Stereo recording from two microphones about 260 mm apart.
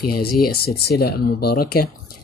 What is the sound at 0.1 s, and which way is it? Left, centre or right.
Speech, left.